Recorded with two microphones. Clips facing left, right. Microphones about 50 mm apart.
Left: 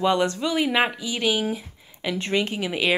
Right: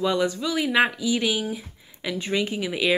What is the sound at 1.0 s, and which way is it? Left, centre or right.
Speech, left.